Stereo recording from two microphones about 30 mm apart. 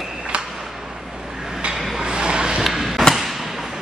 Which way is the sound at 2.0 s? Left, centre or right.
Right.